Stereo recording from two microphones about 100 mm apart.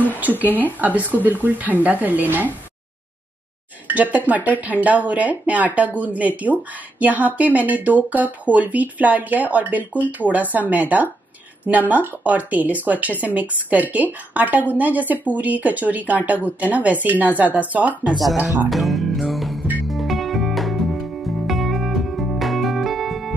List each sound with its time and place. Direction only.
0.7 s speech: 15° right (ahead or behind)
3.8 s speech: 15° right (ahead or behind)
18.1 s speech: centre (ahead or behind)
18.7 s music: centre (ahead or behind)